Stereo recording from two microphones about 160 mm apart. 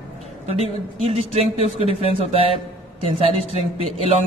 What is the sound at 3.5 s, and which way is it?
Speech, 40° left (ahead or behind).